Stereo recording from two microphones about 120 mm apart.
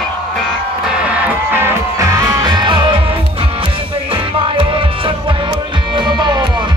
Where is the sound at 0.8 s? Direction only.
10° right (ahead or behind).